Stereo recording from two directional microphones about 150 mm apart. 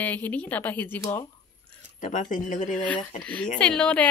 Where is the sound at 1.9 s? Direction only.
60° left (ahead or behind).